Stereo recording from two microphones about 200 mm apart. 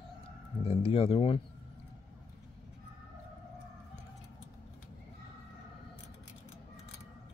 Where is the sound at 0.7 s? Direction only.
30° left (ahead or behind).